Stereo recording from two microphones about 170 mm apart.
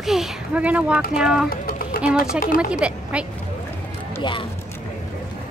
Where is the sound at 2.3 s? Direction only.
50° left (ahead or behind).